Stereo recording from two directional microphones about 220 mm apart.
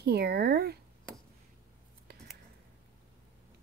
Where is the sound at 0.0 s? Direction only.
45° right (ahead or behind).